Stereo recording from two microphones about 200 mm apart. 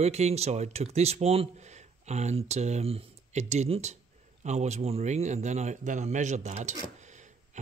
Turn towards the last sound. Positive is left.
turn(degrees=-35)  # may be behind; listen again after turning